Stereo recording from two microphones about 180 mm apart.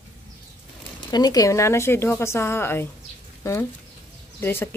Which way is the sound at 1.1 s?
20° left (ahead or behind).